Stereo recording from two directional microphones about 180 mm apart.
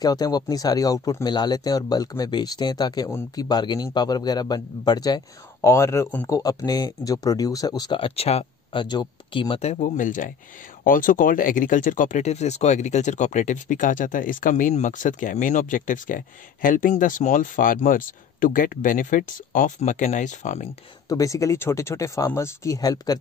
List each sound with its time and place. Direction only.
0.0 s speech: 20° left (ahead or behind); by 20.7 s 40° left (ahead or behind)
21.1 s speech: 20° left (ahead or behind)